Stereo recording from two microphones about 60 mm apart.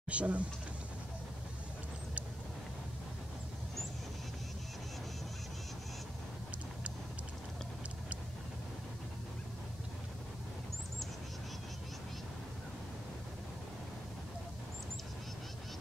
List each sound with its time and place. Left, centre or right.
0.1 s speech: right